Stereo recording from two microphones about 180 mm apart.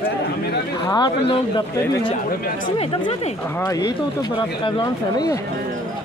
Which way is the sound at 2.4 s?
50° left (ahead or behind).